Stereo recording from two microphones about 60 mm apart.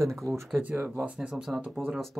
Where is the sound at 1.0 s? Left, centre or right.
Centre.